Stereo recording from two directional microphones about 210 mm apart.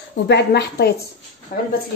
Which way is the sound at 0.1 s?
55° left (ahead or behind).